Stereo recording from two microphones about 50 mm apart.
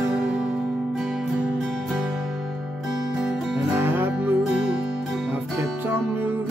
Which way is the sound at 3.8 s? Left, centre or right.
Right.